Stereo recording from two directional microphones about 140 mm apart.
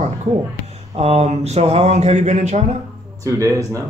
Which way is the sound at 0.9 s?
50° right (ahead or behind).